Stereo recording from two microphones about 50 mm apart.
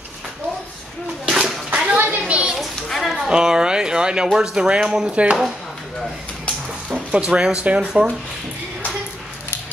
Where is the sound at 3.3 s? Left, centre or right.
Centre.